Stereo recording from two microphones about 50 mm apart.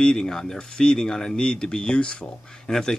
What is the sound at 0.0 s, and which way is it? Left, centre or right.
Speech, centre.